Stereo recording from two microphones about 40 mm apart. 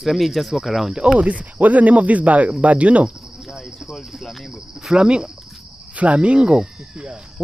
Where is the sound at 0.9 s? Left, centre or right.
Centre.